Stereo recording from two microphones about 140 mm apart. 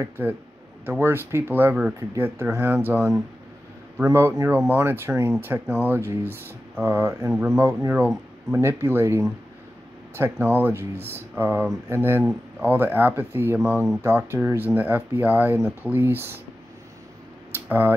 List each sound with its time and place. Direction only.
0.0 s speech: 15° right (ahead or behind)
4.6 s speech: 15° right (ahead or behind)
7.2 s speech: 5° right (ahead or behind)
7.5 s speech: 20° right (ahead or behind)
17.5 s tick-tock: 15° right (ahead or behind)